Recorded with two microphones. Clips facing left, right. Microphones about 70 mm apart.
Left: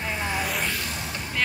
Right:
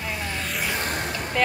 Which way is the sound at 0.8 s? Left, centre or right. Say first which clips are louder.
Right 5 dB; right.